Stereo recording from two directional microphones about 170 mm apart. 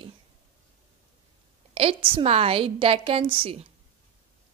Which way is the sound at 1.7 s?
30° right (ahead or behind).